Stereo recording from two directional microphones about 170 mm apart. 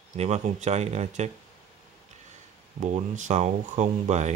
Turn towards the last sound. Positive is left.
turn(degrees=-40)  # may be behind; listen again after turning